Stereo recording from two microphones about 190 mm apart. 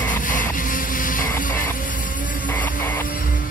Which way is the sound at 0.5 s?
45° left (ahead or behind).